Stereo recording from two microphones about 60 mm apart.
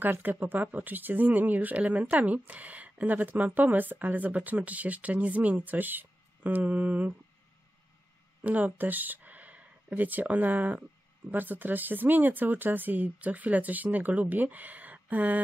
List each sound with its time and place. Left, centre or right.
0.0 s speech: right
8.5 s speech: right